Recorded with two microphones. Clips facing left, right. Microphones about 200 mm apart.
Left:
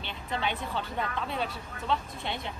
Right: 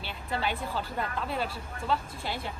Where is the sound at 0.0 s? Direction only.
5° right (ahead or behind).